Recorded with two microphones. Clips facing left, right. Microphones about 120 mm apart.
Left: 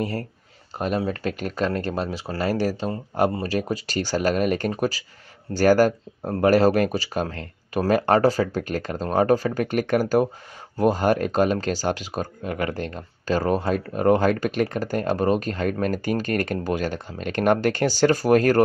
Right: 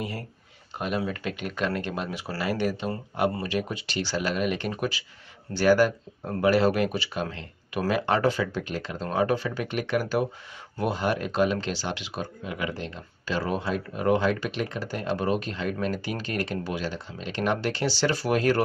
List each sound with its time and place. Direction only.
0.7 s speech: 40° left (ahead or behind)